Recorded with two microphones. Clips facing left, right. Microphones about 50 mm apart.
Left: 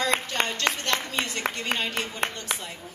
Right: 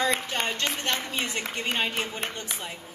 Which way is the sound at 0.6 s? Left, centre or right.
Left.